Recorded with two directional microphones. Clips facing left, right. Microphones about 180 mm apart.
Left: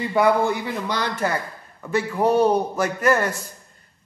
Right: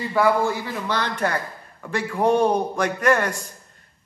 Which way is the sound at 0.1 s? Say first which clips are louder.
Left 1 dB; 20° left (ahead or behind).